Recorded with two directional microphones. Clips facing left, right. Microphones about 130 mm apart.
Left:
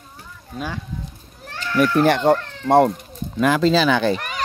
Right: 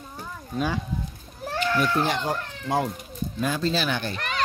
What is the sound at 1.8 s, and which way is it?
Speech, 65° left (ahead or behind).